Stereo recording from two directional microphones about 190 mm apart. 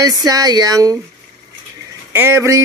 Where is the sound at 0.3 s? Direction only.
20° right (ahead or behind).